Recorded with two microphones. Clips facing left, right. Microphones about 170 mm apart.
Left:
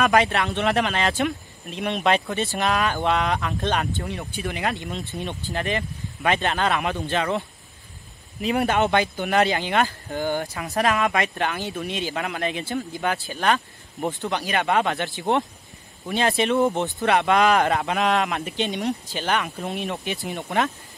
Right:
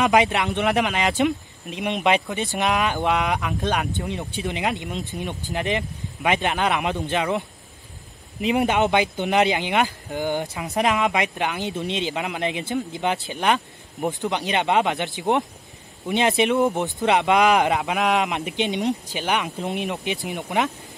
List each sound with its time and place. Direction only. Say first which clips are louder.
0.0 s speech: right 1 dB; 15° right (ahead or behind)